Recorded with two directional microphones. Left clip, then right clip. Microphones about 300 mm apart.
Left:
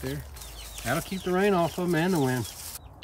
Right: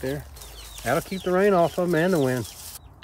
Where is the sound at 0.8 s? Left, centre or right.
Right.